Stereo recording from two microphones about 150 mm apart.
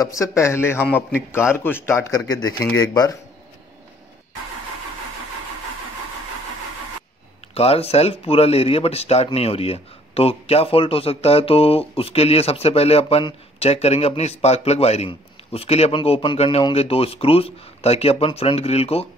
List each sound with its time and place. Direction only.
0.0 s a man's voice: 20° left (ahead or behind)
7.5 s speech: 40° left (ahead or behind)